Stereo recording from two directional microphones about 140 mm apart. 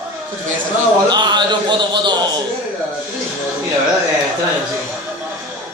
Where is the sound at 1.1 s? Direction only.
30° right (ahead or behind).